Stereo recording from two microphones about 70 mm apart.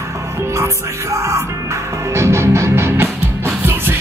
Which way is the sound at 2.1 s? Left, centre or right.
Right.